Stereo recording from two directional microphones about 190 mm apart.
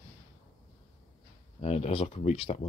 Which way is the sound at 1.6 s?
30° left (ahead or behind).